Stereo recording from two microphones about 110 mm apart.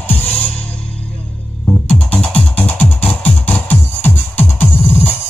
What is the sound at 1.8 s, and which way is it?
Music, 10° left (ahead or behind).